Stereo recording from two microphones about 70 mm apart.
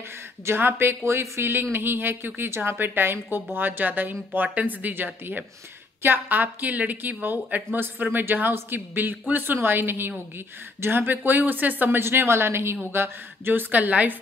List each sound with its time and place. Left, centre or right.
0.5 s a woman's voice: right